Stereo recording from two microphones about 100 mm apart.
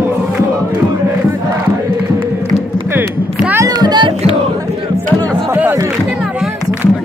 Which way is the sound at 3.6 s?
45° right (ahead or behind).